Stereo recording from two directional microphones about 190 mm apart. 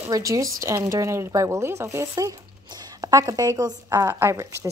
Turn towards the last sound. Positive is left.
turn(degrees=-15)  # may be behind; listen again after turning